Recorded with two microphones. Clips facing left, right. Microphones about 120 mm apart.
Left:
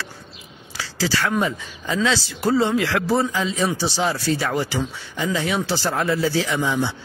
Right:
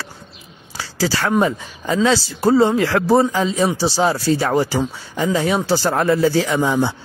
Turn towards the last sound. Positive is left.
turn(degrees=-40)  # may be behind; listen again after turning